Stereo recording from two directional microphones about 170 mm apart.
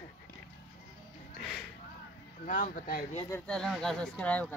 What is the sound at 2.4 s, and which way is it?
Speech, 50° left (ahead or behind).